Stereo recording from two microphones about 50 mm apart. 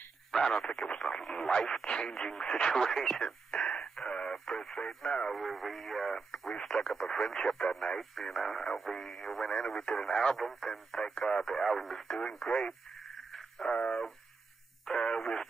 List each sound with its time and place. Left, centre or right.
0.3 s speech: centre
5.3 s speech: centre
13.7 s radio: left